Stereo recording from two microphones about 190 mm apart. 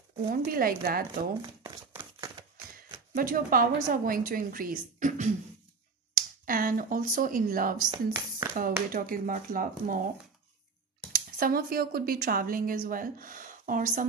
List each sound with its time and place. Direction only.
0.3 s speech: 50° right (ahead or behind)
1.9 s a sound: 20° right (ahead or behind)
3.2 s speech: 50° right (ahead or behind)
7.7 s speech: 20° right (ahead or behind)
8.9 s speech: 45° right (ahead or behind)
11.1 s speech: 50° right (ahead or behind)